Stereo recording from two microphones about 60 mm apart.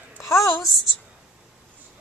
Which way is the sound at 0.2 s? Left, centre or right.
Left.